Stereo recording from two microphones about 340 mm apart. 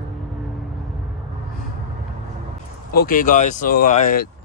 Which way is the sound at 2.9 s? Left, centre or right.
Left.